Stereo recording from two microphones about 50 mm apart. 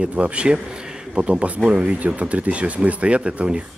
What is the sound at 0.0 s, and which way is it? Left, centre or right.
A man's voice, right.